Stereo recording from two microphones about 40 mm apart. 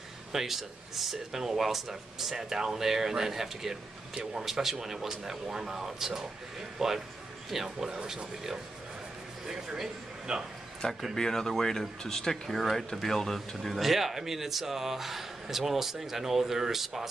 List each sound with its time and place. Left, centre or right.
0.3 s speech: centre
9.5 s a man's voice: centre
10.8 s speech: centre
13.6 s speech: centre